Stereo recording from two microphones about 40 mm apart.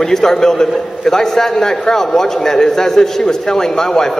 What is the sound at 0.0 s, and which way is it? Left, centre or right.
A man's voice, centre.